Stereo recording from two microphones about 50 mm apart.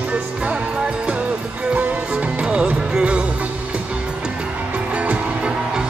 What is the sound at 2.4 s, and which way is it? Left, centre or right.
Music, right.